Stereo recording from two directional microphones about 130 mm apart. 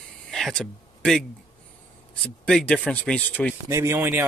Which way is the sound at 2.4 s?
5° left (ahead or behind).